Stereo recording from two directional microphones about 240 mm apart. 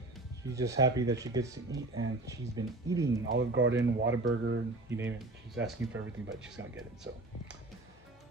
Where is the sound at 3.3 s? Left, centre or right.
Right.